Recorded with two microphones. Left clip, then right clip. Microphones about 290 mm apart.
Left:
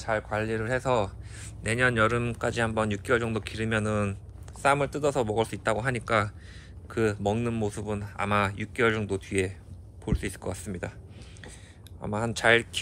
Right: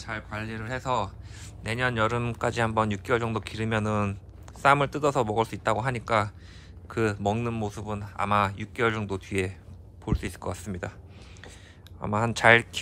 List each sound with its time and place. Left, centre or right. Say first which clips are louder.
0.0 s a man's voice: left 6 dB; centre; by 11.0 s right
12.0 s speech: right 4 dB; right